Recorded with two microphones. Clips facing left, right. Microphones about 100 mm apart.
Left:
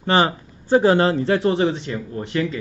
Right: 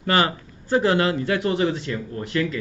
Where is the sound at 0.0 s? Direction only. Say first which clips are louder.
Left 3 dB; 25° left (ahead or behind).